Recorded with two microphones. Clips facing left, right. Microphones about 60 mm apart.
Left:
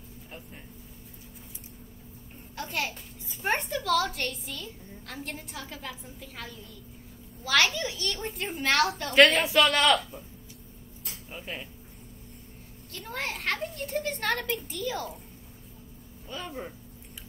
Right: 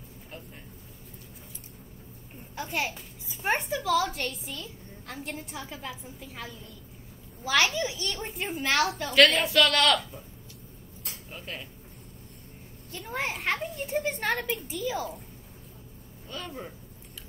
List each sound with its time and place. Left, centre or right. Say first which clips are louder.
2.5 s a child's voice: right 1 dB; centre
5.3 s a woman's voice: right 2 dB; centre
7.4 s a child's voice: even; right
7.7 s a woman's voice: right 1 dB; centre
9.4 s speech: even; centre
9.7 s a woman's voice: left 1 dB; centre
11.3 s speech: left 2 dB; centre
13.1 s a child's voice: right 2 dB; centre
16.3 s speech: left 1 dB; centre